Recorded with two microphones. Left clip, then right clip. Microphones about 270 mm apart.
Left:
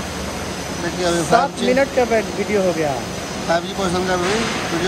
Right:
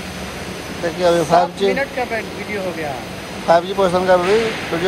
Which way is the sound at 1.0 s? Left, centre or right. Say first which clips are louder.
Right 3 dB; centre.